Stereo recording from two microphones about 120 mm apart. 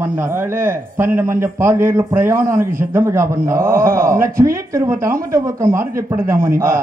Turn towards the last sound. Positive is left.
turn(degrees=-20)  # may be behind; listen again after turning